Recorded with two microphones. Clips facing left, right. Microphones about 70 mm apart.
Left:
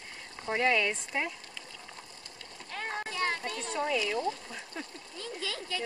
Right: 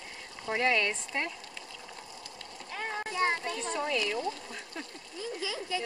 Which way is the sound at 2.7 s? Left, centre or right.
Centre.